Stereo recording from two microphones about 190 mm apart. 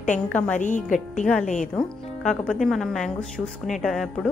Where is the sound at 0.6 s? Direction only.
40° left (ahead or behind).